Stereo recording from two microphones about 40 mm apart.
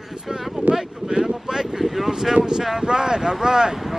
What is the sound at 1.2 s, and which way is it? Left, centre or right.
Speech, centre.